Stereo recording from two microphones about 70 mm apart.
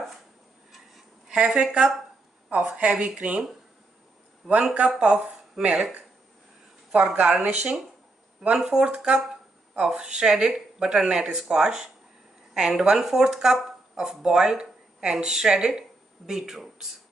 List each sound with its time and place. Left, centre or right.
0.7 s a sound: centre
2.5 s speech: centre
4.4 s speech: centre
5.0 s speech: centre